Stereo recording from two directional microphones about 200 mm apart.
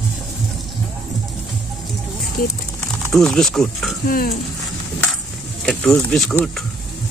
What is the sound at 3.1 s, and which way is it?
Speech, centre (ahead or behind).